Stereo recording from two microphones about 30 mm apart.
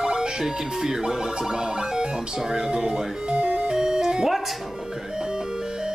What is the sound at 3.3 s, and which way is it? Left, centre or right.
Music, right.